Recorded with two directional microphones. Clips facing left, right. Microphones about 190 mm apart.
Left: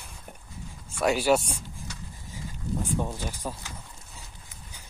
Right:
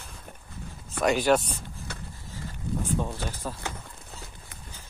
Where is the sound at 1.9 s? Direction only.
55° right (ahead or behind).